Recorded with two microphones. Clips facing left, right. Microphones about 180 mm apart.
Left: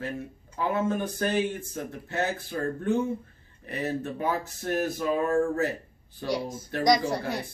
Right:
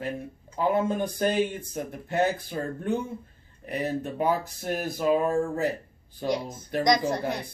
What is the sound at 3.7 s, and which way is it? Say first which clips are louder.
Speech: right 1 dB; 15° right (ahead or behind).